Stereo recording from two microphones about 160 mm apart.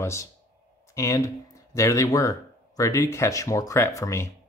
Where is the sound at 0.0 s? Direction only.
20° left (ahead or behind).